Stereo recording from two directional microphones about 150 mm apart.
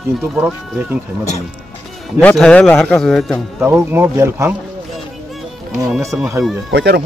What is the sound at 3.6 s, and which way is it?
Speech, 15° right (ahead or behind).